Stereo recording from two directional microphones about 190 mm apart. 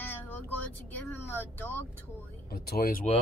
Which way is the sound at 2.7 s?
50° left (ahead or behind).